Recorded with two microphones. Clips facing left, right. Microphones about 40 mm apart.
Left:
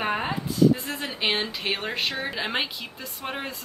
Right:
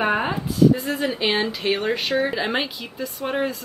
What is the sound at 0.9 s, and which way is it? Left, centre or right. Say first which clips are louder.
A woman's voice: right 5 dB; centre.